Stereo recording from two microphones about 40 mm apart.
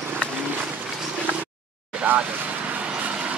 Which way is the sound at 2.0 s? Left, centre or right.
Right.